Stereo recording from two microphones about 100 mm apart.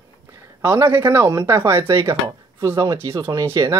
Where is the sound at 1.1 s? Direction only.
35° right (ahead or behind).